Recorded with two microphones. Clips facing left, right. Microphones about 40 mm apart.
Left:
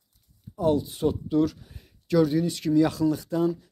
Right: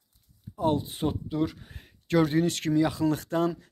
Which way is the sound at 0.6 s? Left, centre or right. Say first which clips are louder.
Left 3 dB; right.